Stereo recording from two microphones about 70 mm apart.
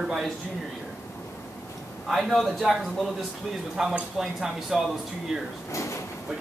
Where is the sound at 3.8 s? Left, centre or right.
Centre.